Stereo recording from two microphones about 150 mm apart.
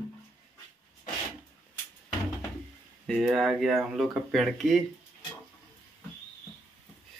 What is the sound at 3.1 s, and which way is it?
Speech, centre (ahead or behind).